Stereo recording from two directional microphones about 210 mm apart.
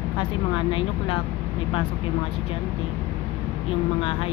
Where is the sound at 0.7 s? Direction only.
25° left (ahead or behind).